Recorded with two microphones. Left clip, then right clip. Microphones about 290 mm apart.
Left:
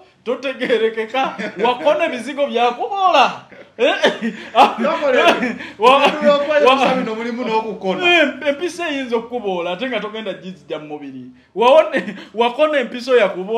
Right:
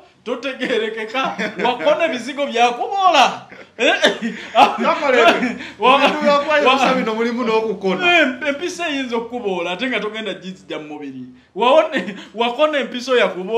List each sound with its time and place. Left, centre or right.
0.3 s a man's voice: left
6.9 s speech: right
8.0 s a man's voice: left